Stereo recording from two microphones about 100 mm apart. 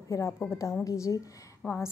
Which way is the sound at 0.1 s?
30° left (ahead or behind).